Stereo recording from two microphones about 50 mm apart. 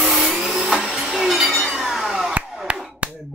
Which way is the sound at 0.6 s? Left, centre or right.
Centre.